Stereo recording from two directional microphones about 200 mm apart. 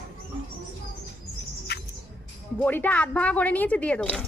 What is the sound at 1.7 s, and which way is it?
Music, 55° left (ahead or behind).